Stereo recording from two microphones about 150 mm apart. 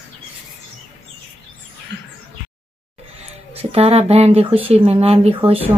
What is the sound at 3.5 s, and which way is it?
Speech, 45° right (ahead or behind).